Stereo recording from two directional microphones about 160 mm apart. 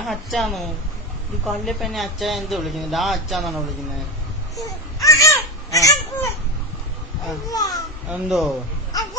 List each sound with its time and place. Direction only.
0.0 s speech: centre (ahead or behind)
4.9 s baby cry: 20° left (ahead or behind)
7.4 s speech: 20° left (ahead or behind)
8.1 s speech: centre (ahead or behind)